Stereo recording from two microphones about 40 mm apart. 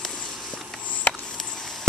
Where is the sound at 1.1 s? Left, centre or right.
Centre.